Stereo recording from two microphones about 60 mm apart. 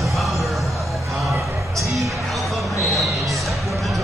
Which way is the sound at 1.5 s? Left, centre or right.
Right.